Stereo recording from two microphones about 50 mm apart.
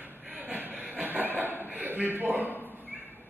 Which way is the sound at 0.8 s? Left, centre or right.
Right.